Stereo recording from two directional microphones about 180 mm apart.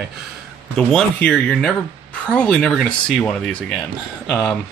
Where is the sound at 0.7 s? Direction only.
5° left (ahead or behind).